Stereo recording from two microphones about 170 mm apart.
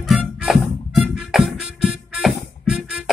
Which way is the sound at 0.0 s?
Centre (ahead or behind).